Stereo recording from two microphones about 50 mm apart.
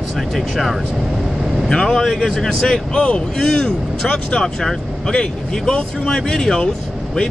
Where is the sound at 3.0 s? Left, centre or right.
Left.